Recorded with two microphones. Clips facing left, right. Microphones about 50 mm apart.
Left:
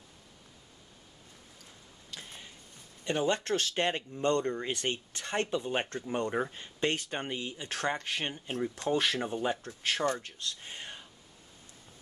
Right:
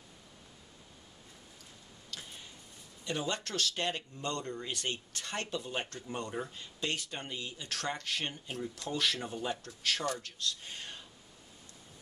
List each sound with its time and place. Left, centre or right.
3.0 s speech: left
8.5 s speech: left